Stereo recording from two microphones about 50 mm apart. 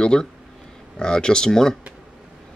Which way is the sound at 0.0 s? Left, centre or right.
Centre.